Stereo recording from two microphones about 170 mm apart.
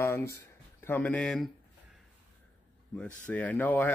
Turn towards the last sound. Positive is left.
turn(degrees=10)  # may be behind; listen again after turning